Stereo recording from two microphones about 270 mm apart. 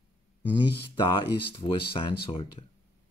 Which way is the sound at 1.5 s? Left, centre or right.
Centre.